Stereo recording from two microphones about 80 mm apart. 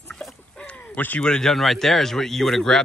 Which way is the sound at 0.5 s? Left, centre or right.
Centre.